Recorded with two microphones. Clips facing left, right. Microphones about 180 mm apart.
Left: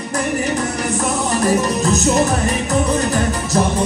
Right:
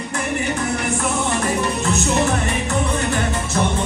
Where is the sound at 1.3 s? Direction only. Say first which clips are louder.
Left 4 dB; 40° left (ahead or behind).